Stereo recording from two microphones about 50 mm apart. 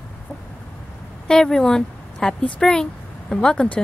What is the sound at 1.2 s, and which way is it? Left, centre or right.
A woman's voice, centre.